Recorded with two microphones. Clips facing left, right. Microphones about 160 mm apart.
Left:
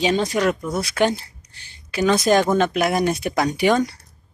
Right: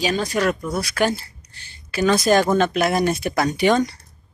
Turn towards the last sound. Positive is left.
turn(degrees=10)  # may be behind; listen again after turning